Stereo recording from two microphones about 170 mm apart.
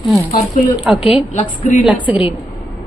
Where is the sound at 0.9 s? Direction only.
5° right (ahead or behind).